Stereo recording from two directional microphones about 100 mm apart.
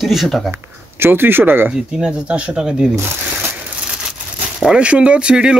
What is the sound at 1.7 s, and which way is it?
Speech, 10° right (ahead or behind).